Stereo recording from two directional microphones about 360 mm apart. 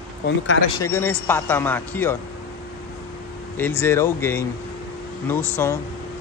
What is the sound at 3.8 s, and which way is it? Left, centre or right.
Speech, centre.